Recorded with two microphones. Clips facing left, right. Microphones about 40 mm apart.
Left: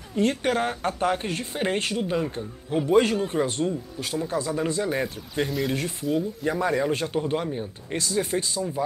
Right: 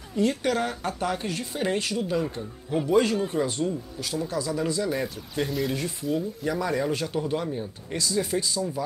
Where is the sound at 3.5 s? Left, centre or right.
Left.